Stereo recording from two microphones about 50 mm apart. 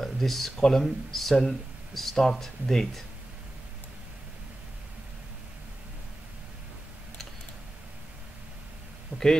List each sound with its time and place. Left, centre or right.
0.0 s a sound: centre
0.6 s speech: centre
9.1 s speech: left